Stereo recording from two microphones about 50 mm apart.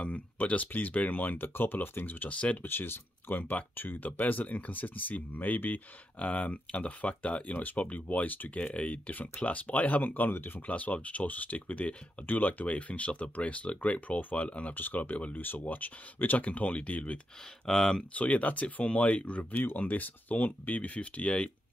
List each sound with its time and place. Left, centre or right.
0.0 s speech: left
2.6 s speech: left
10.7 s speech: left
14.7 s speech: left
17.6 s speech: centre
18.1 s speech: left
19.5 s speech: left